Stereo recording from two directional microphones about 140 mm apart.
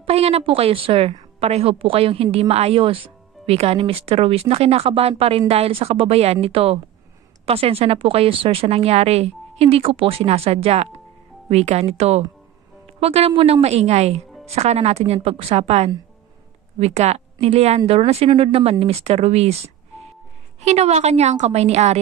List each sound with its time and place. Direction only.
0.0 s a woman's voice: 45° right (ahead or behind)